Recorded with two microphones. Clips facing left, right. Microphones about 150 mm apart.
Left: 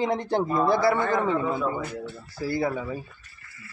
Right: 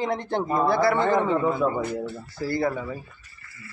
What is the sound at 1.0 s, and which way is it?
Speech, 20° right (ahead or behind).